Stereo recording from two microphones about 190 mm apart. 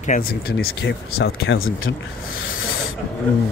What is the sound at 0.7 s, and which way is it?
Speech, 80° left.